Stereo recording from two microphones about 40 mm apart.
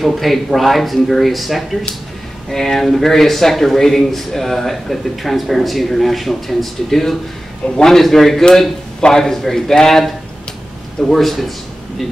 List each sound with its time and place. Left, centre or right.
0.0 s a man's voice: centre
11.1 s speech: centre